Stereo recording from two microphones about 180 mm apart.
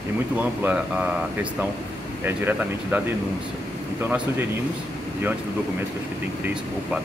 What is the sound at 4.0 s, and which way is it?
Speech, 10° right (ahead or behind).